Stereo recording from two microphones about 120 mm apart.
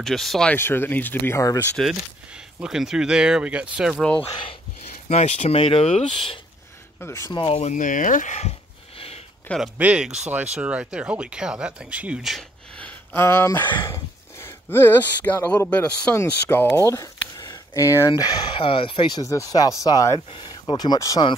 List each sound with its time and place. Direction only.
0.0 s speech: centre (ahead or behind)
0.5 s speech: 20° left (ahead or behind)
1.8 s speech: 5° right (ahead or behind)
4.2 s speech: 50° left (ahead or behind)
5.0 s speech: 70° left (ahead or behind); by 6.4 s 45° left (ahead or behind)
7.0 s speech: 25° left (ahead or behind)
7.2 s speech: 40° left (ahead or behind)
7.5 s speech: 80° left; by 9.2 s 55° left (ahead or behind)
9.8 s speech: 10° right (ahead or behind)
12.7 s a sound: 15° left (ahead or behind)
13.8 s speech: 20° left (ahead or behind); by 19.2 s 40° left (ahead or behind)
19.2 s speech: 25° left (ahead or behind)
20.2 s speech: 40° left (ahead or behind)